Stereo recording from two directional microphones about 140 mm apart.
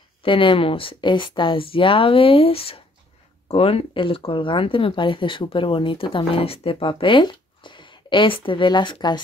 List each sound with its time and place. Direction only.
0.2 s speech: 40° left (ahead or behind)